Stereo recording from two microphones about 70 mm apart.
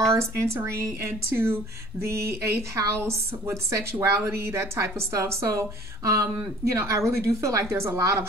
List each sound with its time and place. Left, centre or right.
0.3 s a woman's voice: right